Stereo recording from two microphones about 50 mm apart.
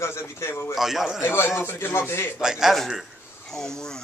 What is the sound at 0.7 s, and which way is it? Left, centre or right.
Speech, centre.